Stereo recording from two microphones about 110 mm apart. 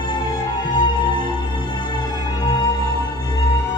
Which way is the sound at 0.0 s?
45° left (ahead or behind).